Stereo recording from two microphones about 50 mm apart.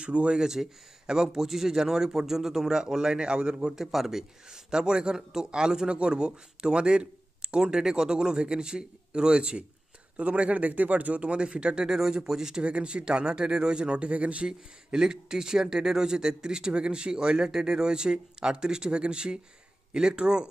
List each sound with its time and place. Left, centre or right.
0.0 s speech: right
3.7 s speech: centre